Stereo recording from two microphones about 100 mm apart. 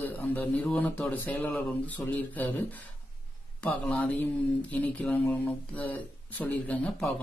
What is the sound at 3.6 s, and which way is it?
Speech, 15° left (ahead or behind).